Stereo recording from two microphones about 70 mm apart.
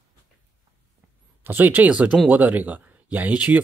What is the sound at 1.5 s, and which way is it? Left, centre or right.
Speech, right.